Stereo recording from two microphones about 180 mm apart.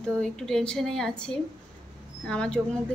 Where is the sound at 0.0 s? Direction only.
5° left (ahead or behind).